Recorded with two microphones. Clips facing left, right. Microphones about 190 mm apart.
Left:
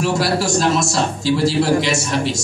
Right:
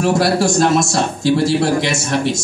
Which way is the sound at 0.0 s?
55° right (ahead or behind).